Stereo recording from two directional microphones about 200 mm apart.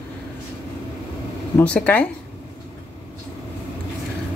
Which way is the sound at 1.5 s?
5° left (ahead or behind).